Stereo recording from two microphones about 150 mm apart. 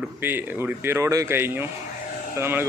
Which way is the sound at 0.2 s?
15° right (ahead or behind).